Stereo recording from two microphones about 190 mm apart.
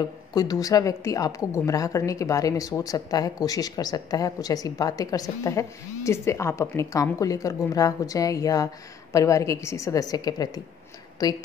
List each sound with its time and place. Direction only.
0.3 s a woman's voice: 20° left (ahead or behind)